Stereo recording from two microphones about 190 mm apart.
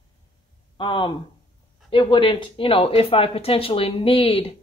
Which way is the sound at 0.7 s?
25° left (ahead or behind).